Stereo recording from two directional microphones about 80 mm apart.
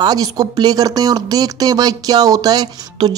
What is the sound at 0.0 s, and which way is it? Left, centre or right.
Speech, right.